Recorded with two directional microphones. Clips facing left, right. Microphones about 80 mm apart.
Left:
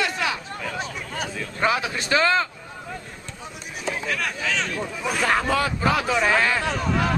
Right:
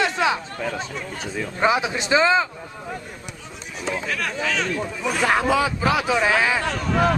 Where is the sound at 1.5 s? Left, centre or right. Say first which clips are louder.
Right 3 dB; centre.